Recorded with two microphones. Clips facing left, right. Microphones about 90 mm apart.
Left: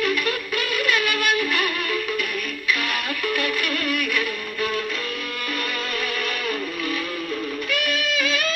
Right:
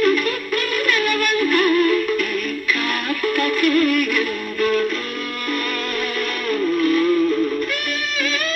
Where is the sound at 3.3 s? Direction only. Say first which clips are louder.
Right 11 dB; 50° right (ahead or behind).